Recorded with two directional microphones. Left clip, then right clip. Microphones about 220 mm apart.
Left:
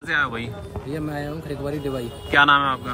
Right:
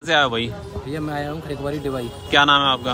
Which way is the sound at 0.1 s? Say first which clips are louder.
Right 5 dB; 5° right (ahead or behind).